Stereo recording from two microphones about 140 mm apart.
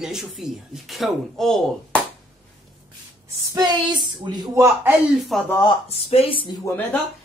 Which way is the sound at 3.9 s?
30° right (ahead or behind).